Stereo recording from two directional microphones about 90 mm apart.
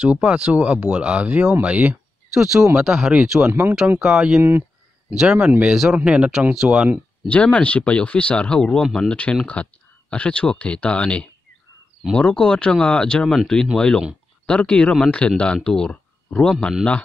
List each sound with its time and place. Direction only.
0.0 s speech: 15° right (ahead or behind)
2.3 s speech: 5° right (ahead or behind)
3.4 s speech: 30° right (ahead or behind)
4.0 s speech: 5° right (ahead or behind)
4.4 s speech: 30° right (ahead or behind)
5.2 s speech: 5° right (ahead or behind)
7.2 s speech: 15° left (ahead or behind)